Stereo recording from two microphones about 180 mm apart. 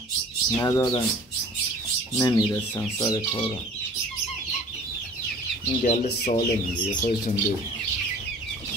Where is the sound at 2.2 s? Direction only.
20° left (ahead or behind).